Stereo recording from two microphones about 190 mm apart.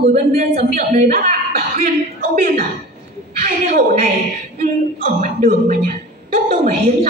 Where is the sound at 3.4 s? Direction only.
45° right (ahead or behind).